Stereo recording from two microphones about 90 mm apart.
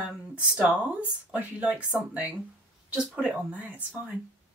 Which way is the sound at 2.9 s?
10° right (ahead or behind).